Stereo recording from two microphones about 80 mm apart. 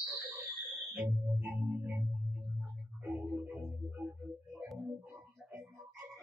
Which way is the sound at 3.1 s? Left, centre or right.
Centre.